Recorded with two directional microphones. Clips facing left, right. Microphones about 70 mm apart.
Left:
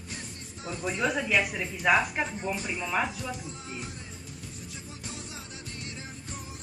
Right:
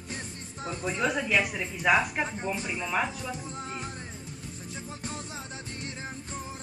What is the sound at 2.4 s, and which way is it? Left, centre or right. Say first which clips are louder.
Speech: even; right.